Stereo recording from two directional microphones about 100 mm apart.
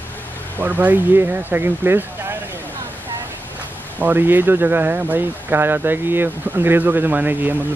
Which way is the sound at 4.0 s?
20° right (ahead or behind).